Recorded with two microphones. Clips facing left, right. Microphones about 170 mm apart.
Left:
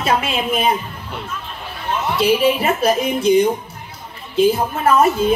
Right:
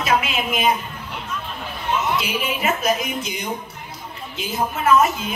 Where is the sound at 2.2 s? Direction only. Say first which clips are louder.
Left 9 dB; 35° left (ahead or behind).